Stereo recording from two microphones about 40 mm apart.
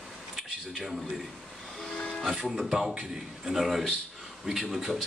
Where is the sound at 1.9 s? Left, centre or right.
Left.